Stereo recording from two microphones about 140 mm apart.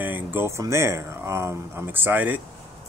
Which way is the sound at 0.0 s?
15° right (ahead or behind).